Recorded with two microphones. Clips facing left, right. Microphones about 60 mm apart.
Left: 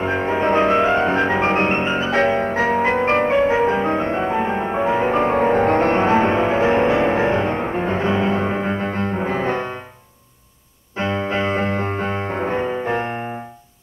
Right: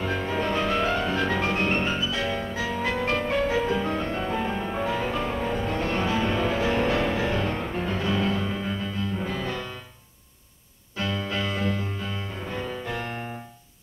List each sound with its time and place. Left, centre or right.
0.0 s music: left
11.0 s music: left